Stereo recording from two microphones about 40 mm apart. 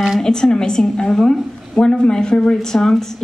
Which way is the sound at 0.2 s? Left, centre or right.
Centre.